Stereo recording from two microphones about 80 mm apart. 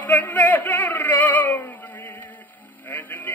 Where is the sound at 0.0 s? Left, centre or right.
Left.